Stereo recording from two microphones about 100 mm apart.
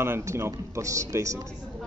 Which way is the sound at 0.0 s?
25° right (ahead or behind).